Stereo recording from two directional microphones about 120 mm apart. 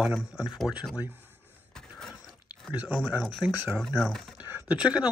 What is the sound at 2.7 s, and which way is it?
Speech, 10° right (ahead or behind).